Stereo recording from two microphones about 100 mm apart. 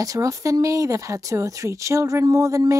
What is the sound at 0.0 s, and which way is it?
Speech, 35° right (ahead or behind).